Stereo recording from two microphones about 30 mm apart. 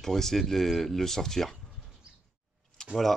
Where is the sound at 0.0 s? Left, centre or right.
Centre.